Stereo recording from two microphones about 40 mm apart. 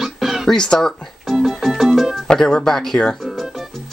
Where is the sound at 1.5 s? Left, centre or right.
Centre.